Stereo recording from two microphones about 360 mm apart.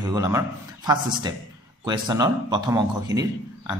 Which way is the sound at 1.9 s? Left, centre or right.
Centre.